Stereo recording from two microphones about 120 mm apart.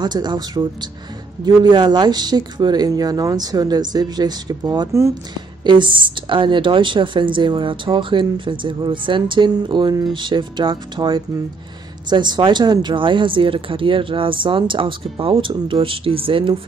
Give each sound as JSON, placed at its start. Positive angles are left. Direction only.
{"t": 0.0, "sound": "speech", "side_deg": -35}